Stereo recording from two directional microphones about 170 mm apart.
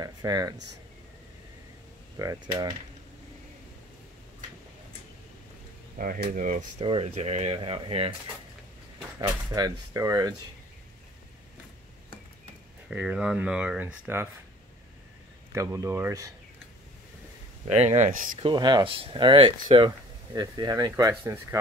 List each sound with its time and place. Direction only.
0.0 s speech: 20° right (ahead or behind)
2.1 s speech: 20° right (ahead or behind)
5.9 s speech: 60° right (ahead or behind)
6.9 s speech: 35° right (ahead or behind)
9.2 s speech: 20° right (ahead or behind)
12.9 s speech: 5° right (ahead or behind)
15.5 s speech: 20° right (ahead or behind)
17.6 s speech: 40° right (ahead or behind)
18.4 s speech: 25° right (ahead or behind)